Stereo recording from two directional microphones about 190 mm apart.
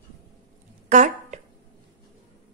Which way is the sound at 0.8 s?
40° right (ahead or behind).